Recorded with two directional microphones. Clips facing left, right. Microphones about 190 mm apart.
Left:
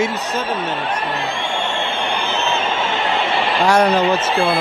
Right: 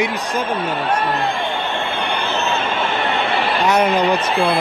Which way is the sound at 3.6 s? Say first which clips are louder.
Left 2 dB; 20° right (ahead or behind).